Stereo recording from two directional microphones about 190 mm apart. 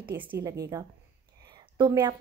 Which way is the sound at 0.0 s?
10° right (ahead or behind).